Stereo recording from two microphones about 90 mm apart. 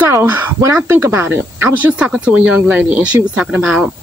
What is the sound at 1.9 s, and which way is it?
Speech, 10° right (ahead or behind).